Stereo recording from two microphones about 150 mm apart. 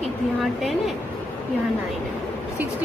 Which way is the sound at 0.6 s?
Centre (ahead or behind).